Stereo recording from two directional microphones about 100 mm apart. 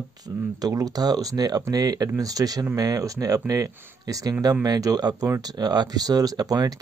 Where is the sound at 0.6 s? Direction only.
40° right (ahead or behind).